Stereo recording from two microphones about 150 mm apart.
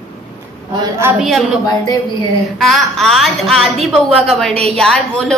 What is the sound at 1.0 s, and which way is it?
Speech, 15° right (ahead or behind).